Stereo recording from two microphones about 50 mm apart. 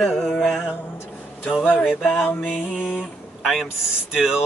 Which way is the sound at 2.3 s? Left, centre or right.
Left.